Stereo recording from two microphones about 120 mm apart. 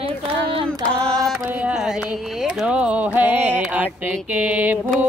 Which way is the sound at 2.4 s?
5° right (ahead or behind).